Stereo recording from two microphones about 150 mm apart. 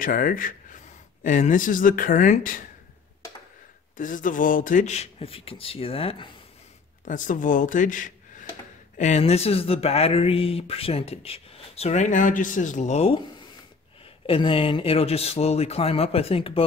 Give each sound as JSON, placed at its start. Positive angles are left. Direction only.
{"t": 0.0, "sound": "speech", "side_deg": 65}
{"t": 3.9, "sound": "speech", "side_deg": 60}
{"t": 7.1, "sound": "speech", "side_deg": 60}
{"t": 14.2, "sound": "speech", "side_deg": 35}